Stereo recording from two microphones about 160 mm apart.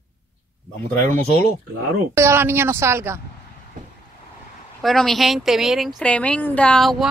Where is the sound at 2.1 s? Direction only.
15° right (ahead or behind).